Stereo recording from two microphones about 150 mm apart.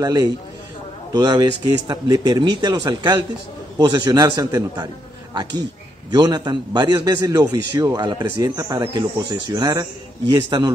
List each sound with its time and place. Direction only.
0.0 s a man's voice: 25° right (ahead or behind)
6.0 s a man's voice: 30° right (ahead or behind)